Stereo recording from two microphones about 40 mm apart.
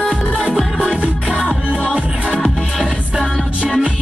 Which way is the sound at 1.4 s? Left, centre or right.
Right.